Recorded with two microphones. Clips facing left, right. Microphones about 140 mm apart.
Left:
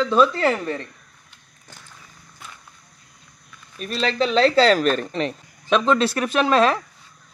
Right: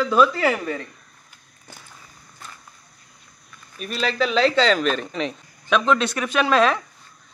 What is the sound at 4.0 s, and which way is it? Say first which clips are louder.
Speech: left 2 dB; 5° right (ahead or behind).